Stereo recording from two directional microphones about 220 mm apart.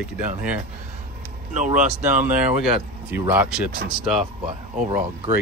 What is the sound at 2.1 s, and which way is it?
Speech, 5° right (ahead or behind).